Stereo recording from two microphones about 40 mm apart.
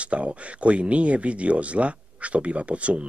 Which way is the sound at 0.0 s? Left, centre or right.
Right.